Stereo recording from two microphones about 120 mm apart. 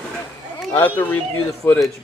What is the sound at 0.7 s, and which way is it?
Speech, 15° left (ahead or behind).